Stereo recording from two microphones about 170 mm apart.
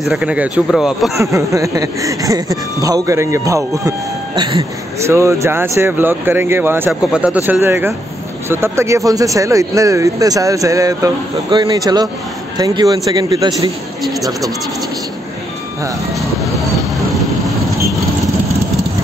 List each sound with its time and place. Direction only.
0.0 s speech: 5° right (ahead or behind)
1.1 s speech: 15° right (ahead or behind)
4.4 s speech: 30° right (ahead or behind)
5.0 s speech: 15° right (ahead or behind)
17.8 s vehicle: 20° right (ahead or behind)